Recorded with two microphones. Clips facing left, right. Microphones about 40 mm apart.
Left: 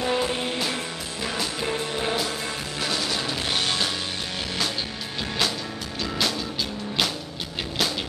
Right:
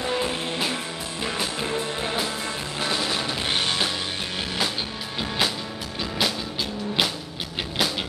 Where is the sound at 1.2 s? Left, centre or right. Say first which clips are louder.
Right 1 dB; centre.